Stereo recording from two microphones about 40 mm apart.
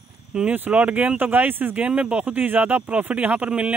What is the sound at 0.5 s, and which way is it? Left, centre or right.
Speech, right.